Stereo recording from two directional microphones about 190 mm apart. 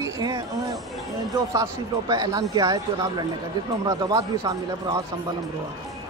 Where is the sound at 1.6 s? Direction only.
20° right (ahead or behind).